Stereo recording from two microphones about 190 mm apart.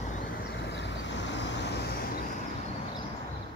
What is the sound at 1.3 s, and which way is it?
Vehicle, 65° left (ahead or behind).